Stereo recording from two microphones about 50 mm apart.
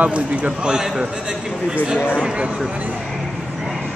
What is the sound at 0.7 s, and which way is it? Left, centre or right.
Speech, centre.